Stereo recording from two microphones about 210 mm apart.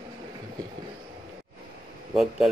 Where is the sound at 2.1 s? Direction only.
Centre (ahead or behind).